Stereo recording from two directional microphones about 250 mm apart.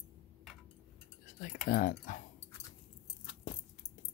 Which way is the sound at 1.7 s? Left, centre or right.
Left.